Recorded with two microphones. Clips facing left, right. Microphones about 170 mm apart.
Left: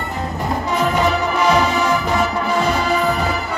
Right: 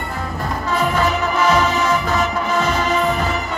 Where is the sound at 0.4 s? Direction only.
15° left (ahead or behind).